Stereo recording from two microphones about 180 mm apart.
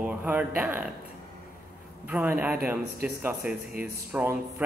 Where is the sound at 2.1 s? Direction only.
10° right (ahead or behind).